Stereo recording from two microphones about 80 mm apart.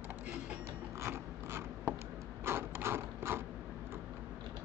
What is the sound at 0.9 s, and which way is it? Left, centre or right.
Gears, right.